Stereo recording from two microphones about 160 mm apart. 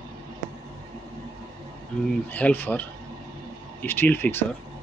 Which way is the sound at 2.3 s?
10° left (ahead or behind).